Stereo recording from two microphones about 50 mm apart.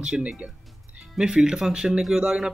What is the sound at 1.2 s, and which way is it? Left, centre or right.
Speech, centre.